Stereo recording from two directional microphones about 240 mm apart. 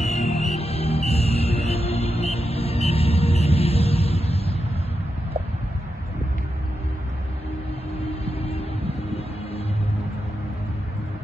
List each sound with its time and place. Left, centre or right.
0.0 s music: left
0.3 s music: centre
0.6 s music: left
8.0 s vehicle: left